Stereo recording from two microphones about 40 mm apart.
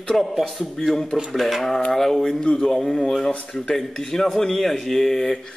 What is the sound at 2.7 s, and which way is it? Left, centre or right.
Speech, centre.